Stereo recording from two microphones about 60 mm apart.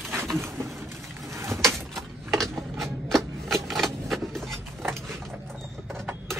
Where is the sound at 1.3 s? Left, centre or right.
Right.